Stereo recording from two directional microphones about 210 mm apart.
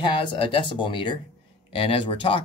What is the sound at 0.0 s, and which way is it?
Speech, 20° left (ahead or behind).